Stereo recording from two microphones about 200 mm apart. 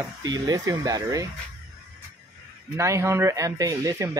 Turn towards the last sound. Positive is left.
turn(degrees=-15)  # may be behind; listen again after turning